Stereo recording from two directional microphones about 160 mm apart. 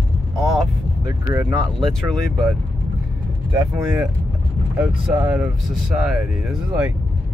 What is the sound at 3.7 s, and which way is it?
Speech, 5° right (ahead or behind).